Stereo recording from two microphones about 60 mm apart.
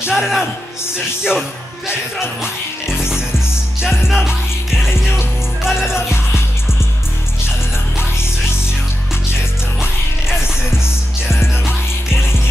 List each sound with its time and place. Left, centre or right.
0.0 s music: centre